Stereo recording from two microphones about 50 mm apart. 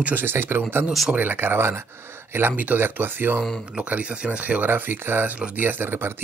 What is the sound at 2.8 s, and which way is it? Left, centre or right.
Speech, right.